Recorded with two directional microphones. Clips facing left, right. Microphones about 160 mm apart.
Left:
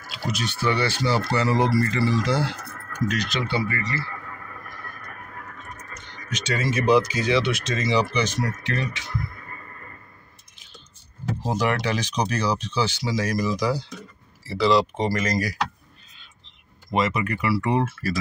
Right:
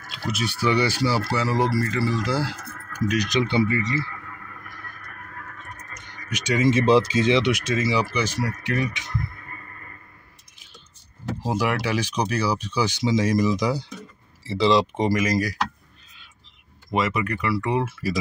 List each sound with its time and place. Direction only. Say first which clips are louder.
0.3 s speech: right 2 dB; 5° right (ahead or behind)
3.1 s speech: right 5 dB; 15° right (ahead or behind)
4.2 s a sound: left 2 dB; 45° left (ahead or behind)
5.9 s speech: even; 15° right (ahead or behind)
11.4 s speech: even; 10° right (ahead or behind)
16.2 s a sound: even; 5° right (ahead or behind)